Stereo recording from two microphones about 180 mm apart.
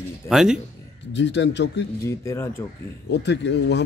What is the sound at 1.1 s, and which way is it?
Speech, 75° left (ahead or behind).